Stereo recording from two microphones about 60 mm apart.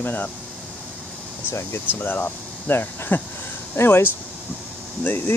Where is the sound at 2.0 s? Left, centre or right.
Left.